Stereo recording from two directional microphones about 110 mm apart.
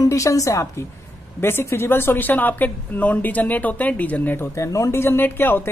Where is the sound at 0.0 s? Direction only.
30° left (ahead or behind).